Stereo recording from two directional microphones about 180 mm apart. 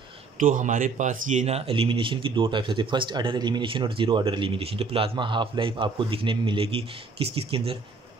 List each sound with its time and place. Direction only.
0.4 s speech: 45° right (ahead or behind)